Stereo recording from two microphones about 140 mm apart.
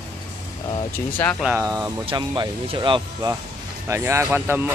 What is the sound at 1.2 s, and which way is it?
Speech, 15° left (ahead or behind).